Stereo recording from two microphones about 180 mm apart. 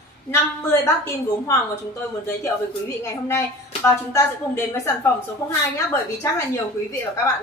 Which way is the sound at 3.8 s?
15° left (ahead or behind).